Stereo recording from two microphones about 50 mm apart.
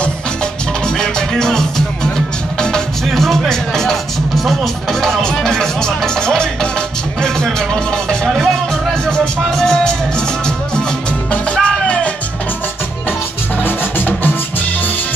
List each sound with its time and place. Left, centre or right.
0.8 s music: centre
13.7 s music: left